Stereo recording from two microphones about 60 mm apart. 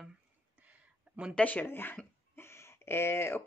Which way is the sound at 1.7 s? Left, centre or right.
Left.